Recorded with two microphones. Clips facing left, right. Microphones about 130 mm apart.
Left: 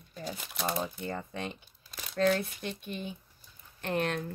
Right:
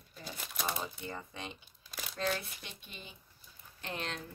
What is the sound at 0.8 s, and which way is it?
Speech, 50° left (ahead or behind).